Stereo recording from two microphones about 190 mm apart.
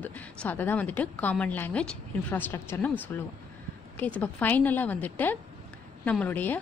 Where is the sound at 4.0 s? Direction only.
10° left (ahead or behind).